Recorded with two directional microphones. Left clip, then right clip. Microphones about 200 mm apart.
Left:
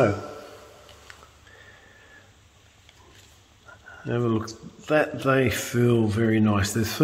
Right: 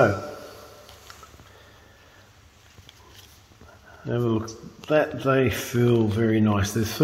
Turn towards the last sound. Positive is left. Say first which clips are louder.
# even
turn(degrees=20)  # may be behind; listen again after turning